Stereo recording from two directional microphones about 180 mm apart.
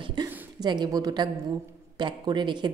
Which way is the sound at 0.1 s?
25° right (ahead or behind).